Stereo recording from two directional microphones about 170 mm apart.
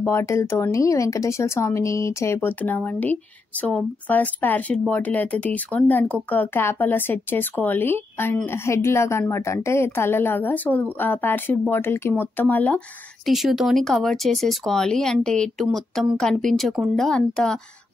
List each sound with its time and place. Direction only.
0.0 s speech: 15° left (ahead or behind)